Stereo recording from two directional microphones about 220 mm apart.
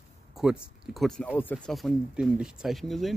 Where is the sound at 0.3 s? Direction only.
Centre (ahead or behind).